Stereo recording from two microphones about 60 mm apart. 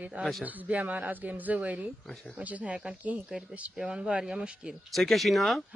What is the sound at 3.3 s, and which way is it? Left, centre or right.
Speech, centre.